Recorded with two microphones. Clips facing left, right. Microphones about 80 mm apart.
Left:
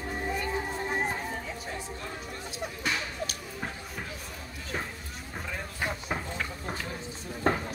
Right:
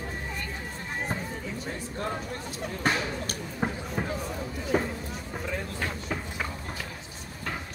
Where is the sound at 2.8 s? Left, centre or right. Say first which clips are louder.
Right 5 dB; right.